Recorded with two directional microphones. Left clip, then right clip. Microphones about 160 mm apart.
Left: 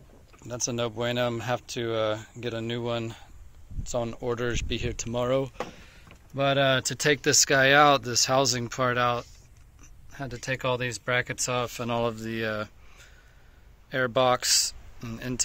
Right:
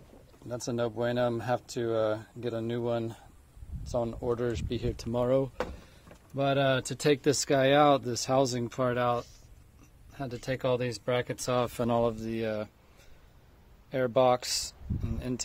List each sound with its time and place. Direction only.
0.5 s speech: 5° right (ahead or behind)
6.3 s speech: 5° right (ahead or behind)
10.4 s speech: 20° right (ahead or behind); by 11.9 s 35° right (ahead or behind)
11.9 s speech: 10° right (ahead or behind)
13.8 s speech: 5° right (ahead or behind)